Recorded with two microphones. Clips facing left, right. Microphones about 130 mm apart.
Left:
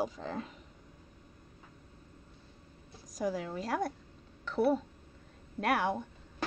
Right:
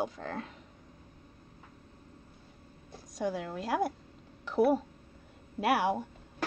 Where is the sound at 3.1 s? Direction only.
Centre (ahead or behind).